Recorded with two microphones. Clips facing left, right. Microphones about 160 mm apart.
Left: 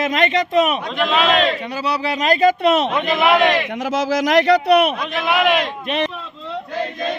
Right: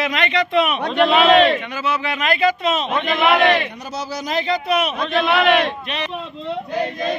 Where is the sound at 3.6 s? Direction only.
90° left; by 4.9 s 60° left (ahead or behind).